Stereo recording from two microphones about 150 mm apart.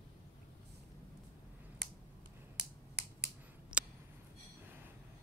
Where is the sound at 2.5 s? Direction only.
90° right.